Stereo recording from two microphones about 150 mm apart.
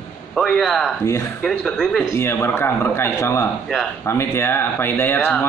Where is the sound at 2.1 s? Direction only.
15° left (ahead or behind).